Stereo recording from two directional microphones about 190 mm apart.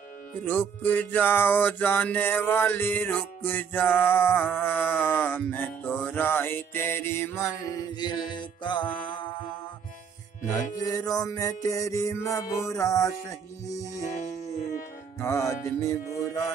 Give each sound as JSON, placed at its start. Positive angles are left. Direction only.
{"t": 0.5, "sound": "music", "side_deg": 10}
{"t": 9.0, "sound": "mantra", "side_deg": 25}
{"t": 10.8, "sound": "music", "side_deg": 20}
{"t": 14.1, "sound": "music", "side_deg": 40}
{"t": 14.7, "sound": "music", "side_deg": 15}